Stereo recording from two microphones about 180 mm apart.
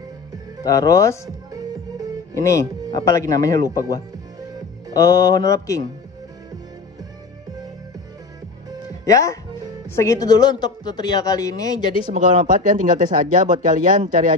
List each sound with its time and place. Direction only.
0.7 s speech: 15° left (ahead or behind)
2.3 s speech: 15° left (ahead or behind)
9.0 s speech: 15° left (ahead or behind)
12.0 s speech: 45° right (ahead or behind)